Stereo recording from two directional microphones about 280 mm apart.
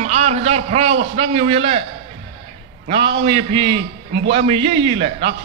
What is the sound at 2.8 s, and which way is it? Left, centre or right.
A man's voice, centre.